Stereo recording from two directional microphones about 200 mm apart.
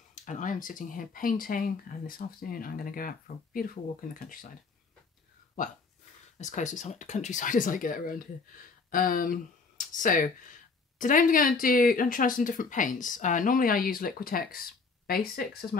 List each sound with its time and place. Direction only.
0.1 s speech: 40° left (ahead or behind)
6.3 s speech: 35° left (ahead or behind)